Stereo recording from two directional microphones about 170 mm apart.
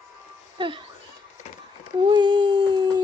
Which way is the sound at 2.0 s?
30° right (ahead or behind).